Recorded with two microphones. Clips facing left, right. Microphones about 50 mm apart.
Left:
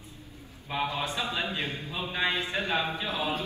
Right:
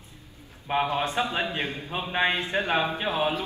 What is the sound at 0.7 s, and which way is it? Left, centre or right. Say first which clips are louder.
A man's voice: right 5 dB; right.